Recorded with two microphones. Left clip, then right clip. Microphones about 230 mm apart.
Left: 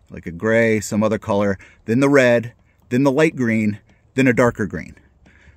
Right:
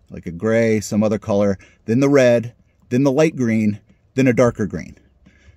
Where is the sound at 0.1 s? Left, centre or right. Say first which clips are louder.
Left 1 dB; centre.